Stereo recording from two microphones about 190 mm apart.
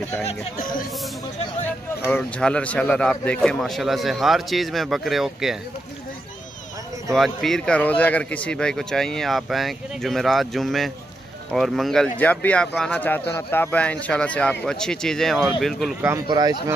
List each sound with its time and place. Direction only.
0.6 s speech: 45° left (ahead or behind)
2.0 s speech: 5° left (ahead or behind)
7.2 s speech: centre (ahead or behind)
16.0 s speech: 15° right (ahead or behind)